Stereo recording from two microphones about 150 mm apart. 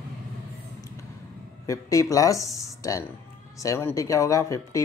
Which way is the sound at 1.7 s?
20° left (ahead or behind).